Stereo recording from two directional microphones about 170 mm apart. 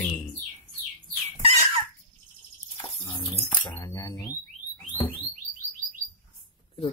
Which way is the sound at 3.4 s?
20° left (ahead or behind).